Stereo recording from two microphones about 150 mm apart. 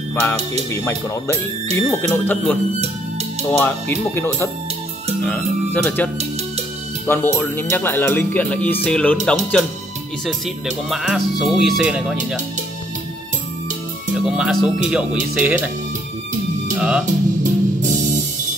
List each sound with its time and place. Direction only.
0.1 s speech: 10° left (ahead or behind)
7.1 s speech: 15° left (ahead or behind); by 12.4 s 5° right (ahead or behind)
14.1 s speech: 5° right (ahead or behind)
16.7 s speech: 5° right (ahead or behind)
17.0 s music: 60° right (ahead or behind)